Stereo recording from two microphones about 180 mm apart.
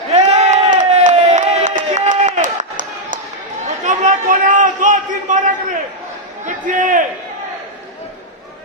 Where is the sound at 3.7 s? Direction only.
40° right (ahead or behind).